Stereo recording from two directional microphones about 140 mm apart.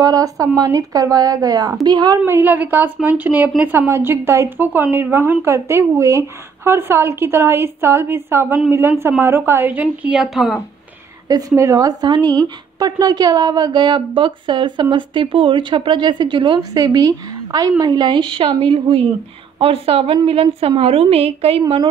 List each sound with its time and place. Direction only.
0.0 s speech: 25° right (ahead or behind)
2.2 s a woman's voice: 15° right (ahead or behind)
11.2 s a woman's voice: 25° right (ahead or behind)